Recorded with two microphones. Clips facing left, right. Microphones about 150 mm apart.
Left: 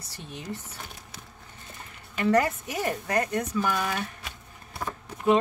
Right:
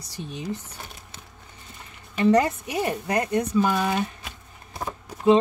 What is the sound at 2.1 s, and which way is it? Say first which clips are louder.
A woman's voice: right 4 dB; 20° right (ahead or behind).